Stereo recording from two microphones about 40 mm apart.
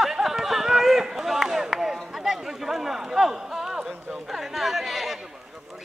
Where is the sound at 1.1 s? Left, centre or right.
Centre.